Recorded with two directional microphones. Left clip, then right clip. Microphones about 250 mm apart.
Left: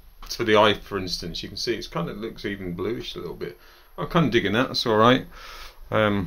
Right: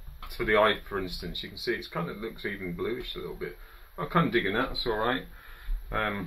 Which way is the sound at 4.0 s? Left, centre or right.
Left.